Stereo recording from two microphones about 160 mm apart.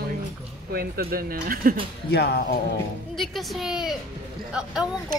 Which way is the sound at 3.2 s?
Centre (ahead or behind).